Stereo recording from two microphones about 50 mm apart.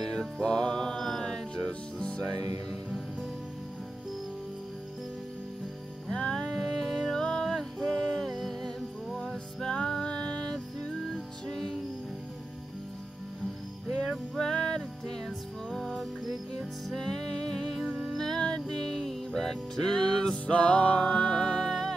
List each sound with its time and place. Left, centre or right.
0.0 s music: centre
0.4 s music: centre
1.7 s music: left
6.1 s music: centre
14.0 s music: centre
20.4 s music: left
21.1 s music: centre